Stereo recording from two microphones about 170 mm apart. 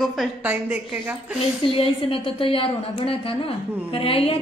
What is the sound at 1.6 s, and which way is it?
A woman's voice, 30° left (ahead or behind).